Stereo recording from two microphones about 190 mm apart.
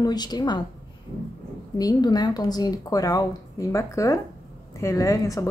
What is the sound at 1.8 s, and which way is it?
Speech, 20° left (ahead or behind).